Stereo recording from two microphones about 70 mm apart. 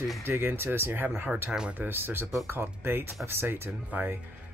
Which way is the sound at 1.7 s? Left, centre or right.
Right.